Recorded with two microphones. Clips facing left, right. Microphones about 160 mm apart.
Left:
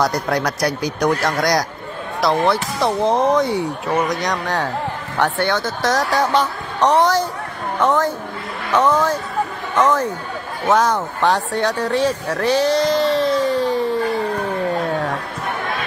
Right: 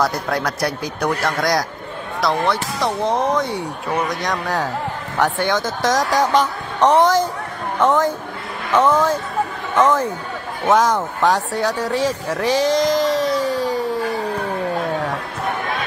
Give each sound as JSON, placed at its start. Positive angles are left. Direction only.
{"t": 0.0, "sound": "speech", "side_deg": -5}
{"t": 2.5, "sound": "speech", "side_deg": 30}
{"t": 4.1, "sound": "speech", "side_deg": 0}
{"t": 5.2, "sound": "a man's voice", "side_deg": -15}
{"t": 13.7, "sound": "a sound", "side_deg": -10}